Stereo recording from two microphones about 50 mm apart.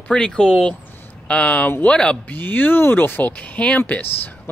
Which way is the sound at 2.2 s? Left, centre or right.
Left.